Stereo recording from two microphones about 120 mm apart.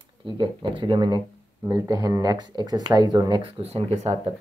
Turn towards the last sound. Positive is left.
turn(degrees=-65)  # may be behind; listen again after turning